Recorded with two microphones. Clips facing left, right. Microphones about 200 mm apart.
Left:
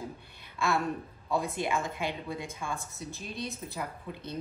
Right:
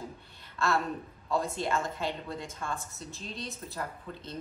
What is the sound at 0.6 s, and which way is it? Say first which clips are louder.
Speech: even; 15° left (ahead or behind).